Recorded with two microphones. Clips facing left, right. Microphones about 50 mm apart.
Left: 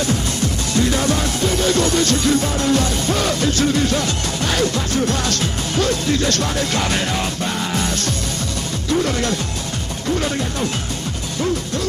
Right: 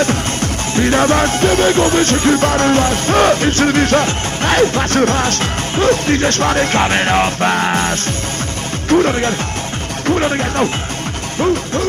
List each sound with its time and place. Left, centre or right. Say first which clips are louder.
0.0 s music: right 4 dB; right
1.7 s music: right 4 dB; right
8.9 s speech: right 7 dB; right
10.1 s music: right 6 dB; right